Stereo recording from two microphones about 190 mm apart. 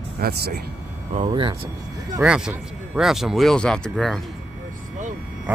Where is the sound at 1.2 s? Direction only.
25° right (ahead or behind).